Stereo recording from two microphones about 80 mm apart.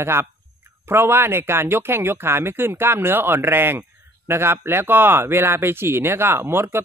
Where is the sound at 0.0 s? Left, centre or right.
Right.